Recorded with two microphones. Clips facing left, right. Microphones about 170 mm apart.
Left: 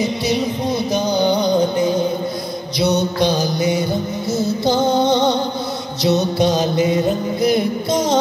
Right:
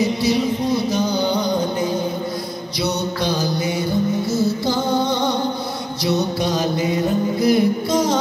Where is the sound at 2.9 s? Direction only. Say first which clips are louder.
Left 5 dB; 20° left (ahead or behind).